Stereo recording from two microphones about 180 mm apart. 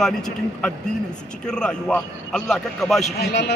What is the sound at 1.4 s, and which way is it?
A man's voice, 5° left (ahead or behind).